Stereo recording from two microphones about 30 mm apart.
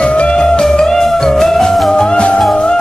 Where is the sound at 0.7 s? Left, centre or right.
Centre.